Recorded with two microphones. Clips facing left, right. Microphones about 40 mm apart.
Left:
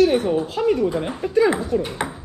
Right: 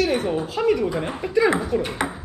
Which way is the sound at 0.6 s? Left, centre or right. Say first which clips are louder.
Even; right.